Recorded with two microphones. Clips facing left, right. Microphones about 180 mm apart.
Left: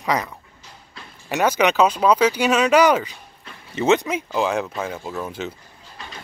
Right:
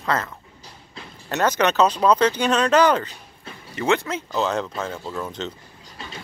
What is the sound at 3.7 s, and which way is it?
Speech, 20° left (ahead or behind).